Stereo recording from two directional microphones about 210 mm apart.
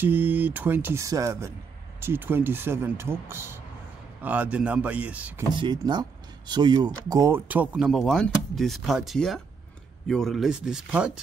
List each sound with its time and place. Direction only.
0.0 s speech: 10° right (ahead or behind)
5.5 s speech: 20° right (ahead or behind); by 11.1 s 5° right (ahead or behind)